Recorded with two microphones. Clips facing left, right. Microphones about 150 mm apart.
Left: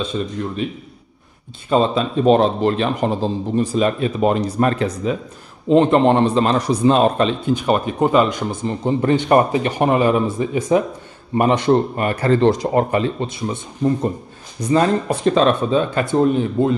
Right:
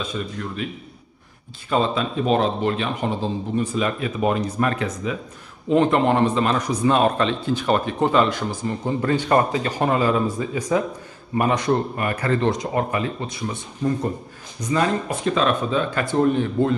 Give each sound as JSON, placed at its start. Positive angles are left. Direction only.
{"t": 0.1, "sound": "a man's voice", "side_deg": 25}
{"t": 1.7, "sound": "a man's voice", "side_deg": 30}
{"t": 14.7, "sound": "a man's voice", "side_deg": 35}
{"t": 15.8, "sound": "a man's voice", "side_deg": 20}